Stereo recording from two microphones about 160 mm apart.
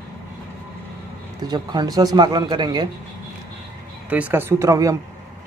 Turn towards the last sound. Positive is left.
turn(degrees=-20)  # may be behind; listen again after turning